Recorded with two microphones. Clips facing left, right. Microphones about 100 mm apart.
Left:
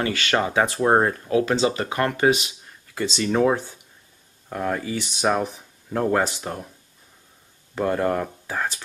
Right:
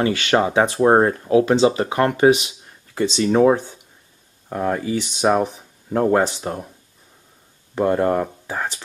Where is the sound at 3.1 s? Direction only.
5° right (ahead or behind).